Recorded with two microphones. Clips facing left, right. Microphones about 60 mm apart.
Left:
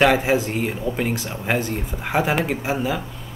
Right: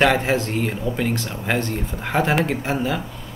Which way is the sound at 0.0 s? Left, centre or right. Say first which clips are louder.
Left 1 dB; centre.